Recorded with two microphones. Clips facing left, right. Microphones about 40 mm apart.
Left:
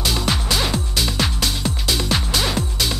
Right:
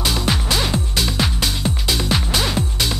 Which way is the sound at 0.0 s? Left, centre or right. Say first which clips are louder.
Right 1 dB; centre.